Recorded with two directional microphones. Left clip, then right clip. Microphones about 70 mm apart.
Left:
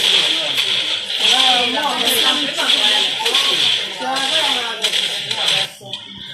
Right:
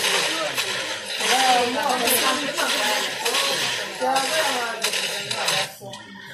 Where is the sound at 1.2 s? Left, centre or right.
Left.